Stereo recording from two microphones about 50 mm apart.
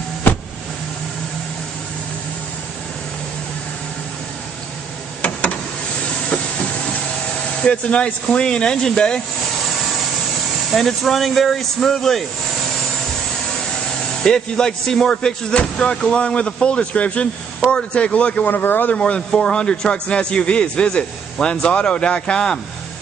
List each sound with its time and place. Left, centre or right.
5.2 s a sound: left
7.6 s speech: left
10.7 s speech: centre
14.2 s speech: centre
18.5 s speech: left
18.9 s speech: left